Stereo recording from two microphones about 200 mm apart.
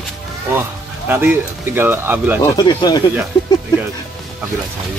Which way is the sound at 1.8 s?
10° right (ahead or behind).